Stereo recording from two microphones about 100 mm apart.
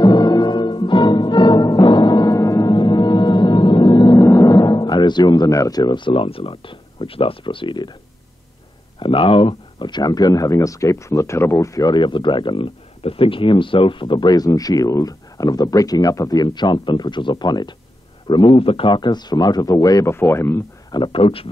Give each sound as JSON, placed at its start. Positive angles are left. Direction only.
{"t": 0.0, "sound": "music", "side_deg": 45}
{"t": 2.7, "sound": "music", "side_deg": 50}
{"t": 4.2, "sound": "music", "side_deg": 35}
{"t": 4.8, "sound": "speech", "side_deg": 50}
{"t": 6.0, "sound": "speech", "side_deg": 65}
{"t": 9.0, "sound": "speech", "side_deg": 60}
{"t": 11.9, "sound": "speech", "side_deg": 50}
{"t": 13.0, "sound": "speech", "side_deg": 70}
{"t": 20.2, "sound": "speech", "side_deg": 25}
{"t": 20.9, "sound": "speech", "side_deg": 55}